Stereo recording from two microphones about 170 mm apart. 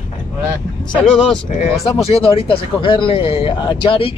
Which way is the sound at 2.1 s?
35° left (ahead or behind).